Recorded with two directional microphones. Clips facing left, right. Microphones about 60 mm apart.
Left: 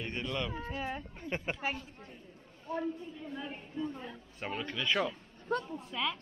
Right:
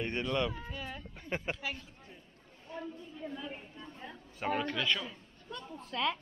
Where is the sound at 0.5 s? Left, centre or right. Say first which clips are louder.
Left 4 dB; left.